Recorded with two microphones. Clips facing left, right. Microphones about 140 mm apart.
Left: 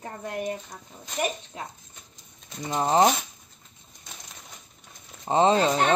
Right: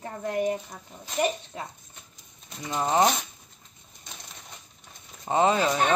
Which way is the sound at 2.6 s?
30° left (ahead or behind).